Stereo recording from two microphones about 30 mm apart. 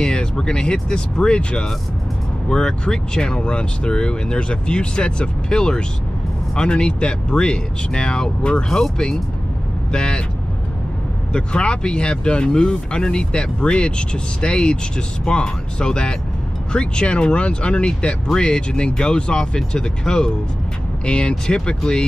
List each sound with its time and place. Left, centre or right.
0.0 s speech: left
8.6 s speech: centre
9.9 s speech: left
11.3 s speech: left
21.0 s speech: left